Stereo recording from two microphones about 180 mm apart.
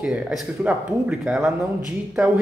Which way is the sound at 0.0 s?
5° right (ahead or behind).